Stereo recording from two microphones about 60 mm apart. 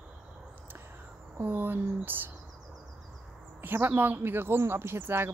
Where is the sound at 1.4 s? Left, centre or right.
Right.